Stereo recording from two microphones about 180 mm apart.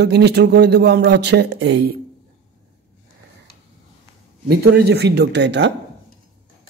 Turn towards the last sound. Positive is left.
turn(degrees=-70)  # may be behind; listen again after turning